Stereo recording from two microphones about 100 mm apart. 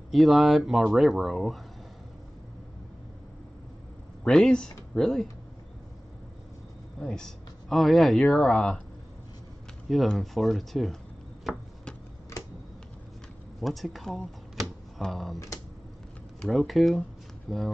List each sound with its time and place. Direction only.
0.1 s speech: centre (ahead or behind)
4.2 s speech: 5° left (ahead or behind)
7.0 s speech: 5° left (ahead or behind)
9.8 s speech: centre (ahead or behind)
13.6 s speech: centre (ahead or behind)
16.3 s speech: 5° left (ahead or behind)